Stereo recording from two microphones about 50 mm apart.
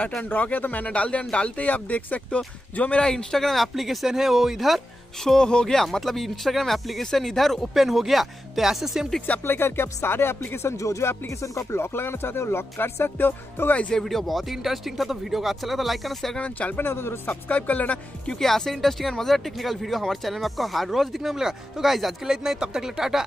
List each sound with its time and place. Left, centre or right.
0.3 s speech: left; by 5.9 s centre
5.9 s speech: centre
9.2 s speech: left
11.8 s speech: left
13.7 s speech: left
13.9 s speech: centre
16.3 s speech: left
16.9 s speech: left
17.5 s speech: left
18.4 s speech: centre